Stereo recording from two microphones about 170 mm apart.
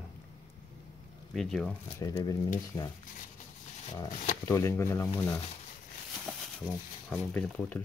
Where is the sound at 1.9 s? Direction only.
20° left (ahead or behind).